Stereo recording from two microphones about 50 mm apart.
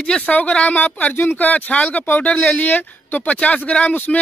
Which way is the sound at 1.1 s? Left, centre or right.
Left.